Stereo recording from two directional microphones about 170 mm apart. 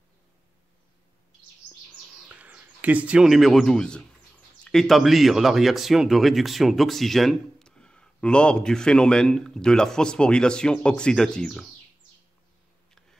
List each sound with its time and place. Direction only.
2.1 s speech: 5° right (ahead or behind)